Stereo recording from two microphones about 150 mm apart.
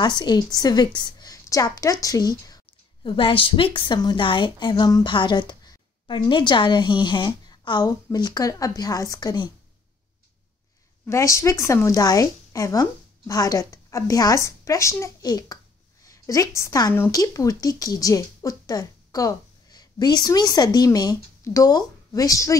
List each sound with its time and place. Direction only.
0.0 s a woman's voice: 30° left (ahead or behind)
11.1 s a woman's voice: 20° left (ahead or behind)